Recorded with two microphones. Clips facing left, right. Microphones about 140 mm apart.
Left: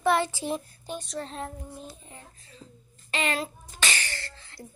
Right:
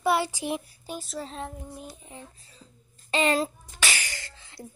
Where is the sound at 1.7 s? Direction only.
15° right (ahead or behind).